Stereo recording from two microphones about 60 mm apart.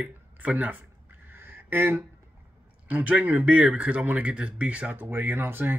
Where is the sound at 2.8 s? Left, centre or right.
Right.